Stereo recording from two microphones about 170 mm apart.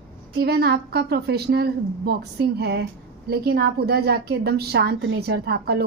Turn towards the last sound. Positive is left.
turn(degrees=-70)  # may be behind; listen again after turning